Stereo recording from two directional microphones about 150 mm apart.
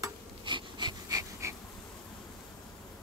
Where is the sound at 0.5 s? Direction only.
30° right (ahead or behind).